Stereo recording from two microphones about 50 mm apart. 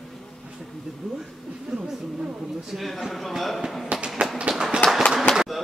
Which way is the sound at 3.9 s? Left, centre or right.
Right.